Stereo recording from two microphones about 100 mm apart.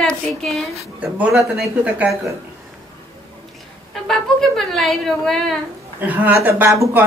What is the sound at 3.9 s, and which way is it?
A woman's voice, 5° left (ahead or behind).